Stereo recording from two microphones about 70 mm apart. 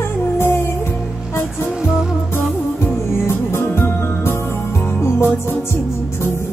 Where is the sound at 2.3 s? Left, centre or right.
Left.